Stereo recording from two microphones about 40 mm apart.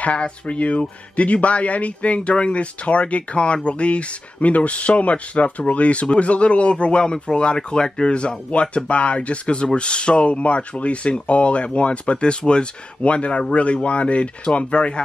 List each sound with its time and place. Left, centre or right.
0.0 s speech: left